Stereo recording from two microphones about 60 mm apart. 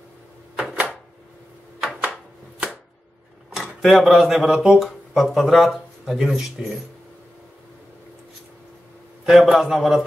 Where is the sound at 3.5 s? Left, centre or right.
Centre.